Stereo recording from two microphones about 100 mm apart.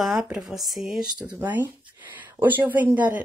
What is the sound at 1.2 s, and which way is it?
Speech, 15° right (ahead or behind).